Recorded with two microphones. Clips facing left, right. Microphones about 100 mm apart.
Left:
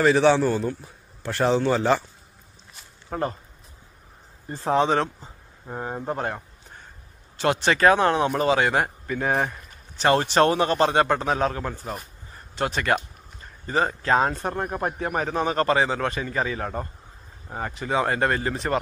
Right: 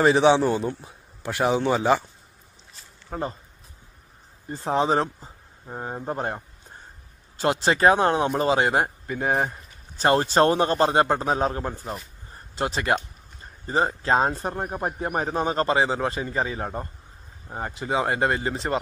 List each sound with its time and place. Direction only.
0.0 s a man's voice: 20° right (ahead or behind)
1.3 s speech: 10° right (ahead or behind)
3.1 s speech: 5° right (ahead or behind)
5.8 s speech: 10° right (ahead or behind)
6.0 s speech: 25° right (ahead or behind)
7.4 s speech: 30° right (ahead or behind)
9.9 s a man's voice: 35° right (ahead or behind)
14.4 s speech: 15° right (ahead or behind)
15.0 s speech: 25° right (ahead or behind)